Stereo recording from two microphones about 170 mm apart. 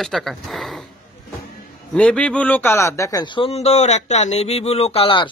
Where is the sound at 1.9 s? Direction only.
5° left (ahead or behind); by 5.2 s 35° left (ahead or behind).